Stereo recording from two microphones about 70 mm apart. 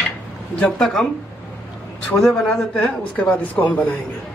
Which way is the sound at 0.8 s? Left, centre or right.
Centre.